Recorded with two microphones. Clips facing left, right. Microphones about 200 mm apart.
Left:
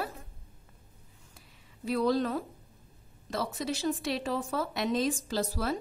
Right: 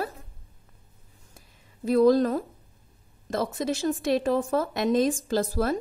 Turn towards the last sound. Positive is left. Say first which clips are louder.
# right 6 dB
turn(degrees=-50)  # may be behind; listen again after turning